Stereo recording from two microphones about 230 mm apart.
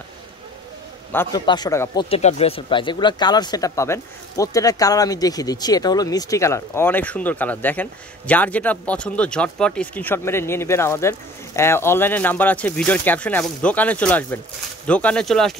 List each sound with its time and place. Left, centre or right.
1.1 s speech: centre
2.0 s speech: left; by 15.5 s centre